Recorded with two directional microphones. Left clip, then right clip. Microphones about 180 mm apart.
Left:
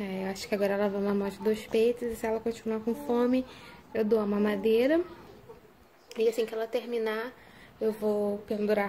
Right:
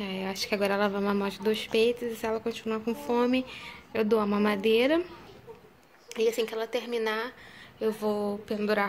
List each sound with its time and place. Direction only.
0.0 s speech: 10° left (ahead or behind)
6.1 s a woman's voice: 5° left (ahead or behind)
8.0 s speech: 15° right (ahead or behind)
8.5 s speech: 5° left (ahead or behind)